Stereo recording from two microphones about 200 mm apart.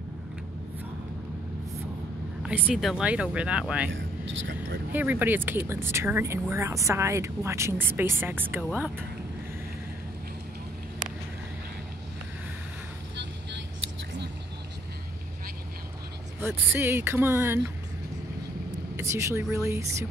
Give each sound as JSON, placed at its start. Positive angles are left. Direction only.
{"t": 2.4, "sound": "speech", "side_deg": -5}
{"t": 4.9, "sound": "speech", "side_deg": -10}
{"t": 13.1, "sound": "vehicle", "side_deg": -60}
{"t": 16.3, "sound": "speech", "side_deg": -10}
{"t": 18.9, "sound": "speech", "side_deg": -15}